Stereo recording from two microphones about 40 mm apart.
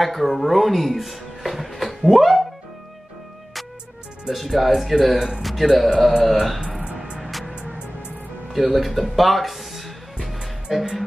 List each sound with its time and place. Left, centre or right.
0.0 s speech: centre
4.3 s speech: centre
6.8 s music: right
7.2 s music: centre
8.5 s speech: centre
10.2 s music: centre